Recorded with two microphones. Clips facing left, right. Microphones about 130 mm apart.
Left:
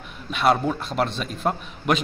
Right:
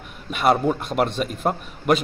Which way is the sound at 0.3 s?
10° right (ahead or behind).